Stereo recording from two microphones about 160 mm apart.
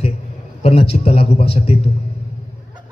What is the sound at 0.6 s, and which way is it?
A man's voice, 35° left (ahead or behind).